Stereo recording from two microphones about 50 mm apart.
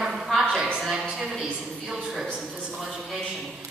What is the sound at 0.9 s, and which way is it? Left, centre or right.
Speech, centre.